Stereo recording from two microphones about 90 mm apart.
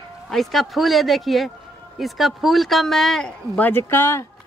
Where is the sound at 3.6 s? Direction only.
20° left (ahead or behind).